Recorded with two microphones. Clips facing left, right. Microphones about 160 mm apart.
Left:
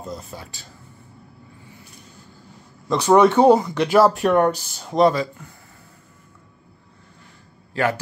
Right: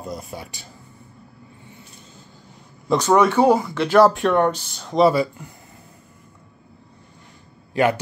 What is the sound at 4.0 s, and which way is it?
Speech, centre (ahead or behind).